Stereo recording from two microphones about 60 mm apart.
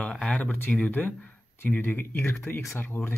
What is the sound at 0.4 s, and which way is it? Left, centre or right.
Speech, left.